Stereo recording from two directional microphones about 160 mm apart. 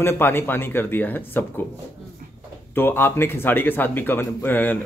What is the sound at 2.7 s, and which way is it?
Speech, 15° left (ahead or behind).